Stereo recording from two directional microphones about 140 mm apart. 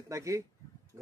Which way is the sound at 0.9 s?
20° right (ahead or behind).